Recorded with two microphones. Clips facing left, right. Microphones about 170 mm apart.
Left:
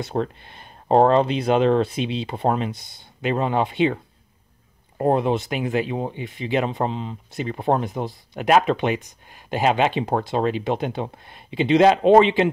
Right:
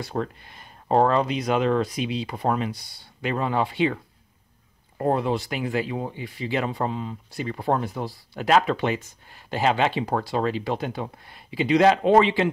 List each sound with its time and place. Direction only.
0.0 s speech: 25° left (ahead or behind)